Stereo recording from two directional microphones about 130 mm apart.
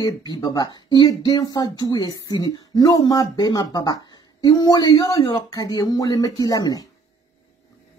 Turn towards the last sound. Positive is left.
turn(degrees=30)  # may be behind; listen again after turning